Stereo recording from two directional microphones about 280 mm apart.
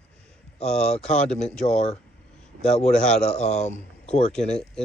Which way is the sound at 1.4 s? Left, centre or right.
Centre.